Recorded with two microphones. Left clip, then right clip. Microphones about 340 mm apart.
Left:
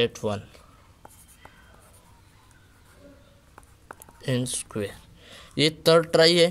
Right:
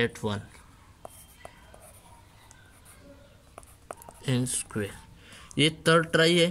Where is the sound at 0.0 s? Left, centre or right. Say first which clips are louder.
Left 4 dB; centre.